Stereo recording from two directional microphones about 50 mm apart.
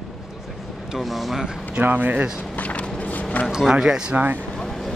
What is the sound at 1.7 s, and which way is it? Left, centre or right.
Speech, right.